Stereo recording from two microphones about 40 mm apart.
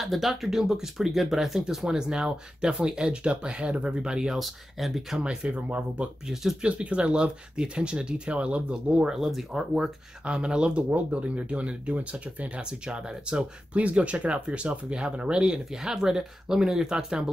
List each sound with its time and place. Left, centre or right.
0.0 s speech: centre
4.4 s speech: centre
5.2 s speech: right
5.7 s speech: right
6.6 s speech: right
9.5 s speech: centre
10.2 s speech: right
10.9 s speech: right; by 17.2 s centre